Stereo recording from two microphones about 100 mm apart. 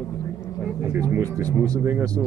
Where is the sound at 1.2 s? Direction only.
35° right (ahead or behind).